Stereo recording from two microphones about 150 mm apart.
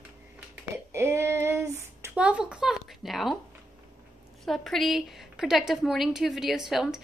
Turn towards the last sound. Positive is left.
turn(degrees=-5)  # may be behind; listen again after turning